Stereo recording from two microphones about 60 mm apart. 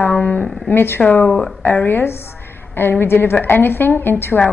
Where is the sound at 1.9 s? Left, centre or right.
Left.